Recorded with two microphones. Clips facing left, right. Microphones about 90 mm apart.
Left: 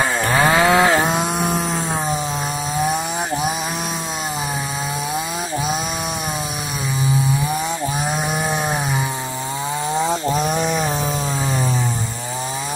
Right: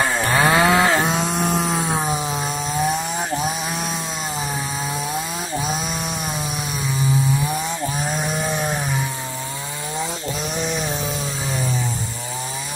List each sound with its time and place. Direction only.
0.0 s chainsaw: centre (ahead or behind)
10.4 s chainsaw: 50° left (ahead or behind)